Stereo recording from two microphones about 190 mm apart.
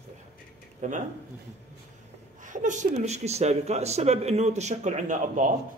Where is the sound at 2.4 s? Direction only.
40° right (ahead or behind).